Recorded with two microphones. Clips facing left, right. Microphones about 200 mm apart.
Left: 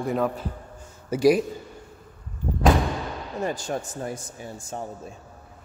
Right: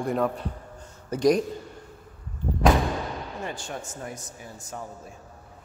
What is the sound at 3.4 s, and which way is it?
Speech, 40° left (ahead or behind).